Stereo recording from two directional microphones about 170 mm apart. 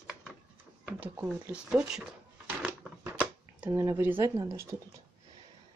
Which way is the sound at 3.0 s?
10° right (ahead or behind).